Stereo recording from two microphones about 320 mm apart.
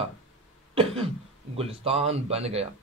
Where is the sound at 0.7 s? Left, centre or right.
Centre.